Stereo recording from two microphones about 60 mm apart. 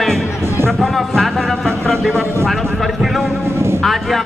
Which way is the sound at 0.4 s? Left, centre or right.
Right.